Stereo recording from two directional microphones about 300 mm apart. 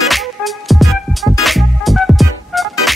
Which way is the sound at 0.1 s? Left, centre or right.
Centre.